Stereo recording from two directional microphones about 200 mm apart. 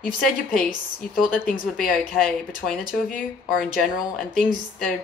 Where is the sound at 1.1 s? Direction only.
45° left (ahead or behind).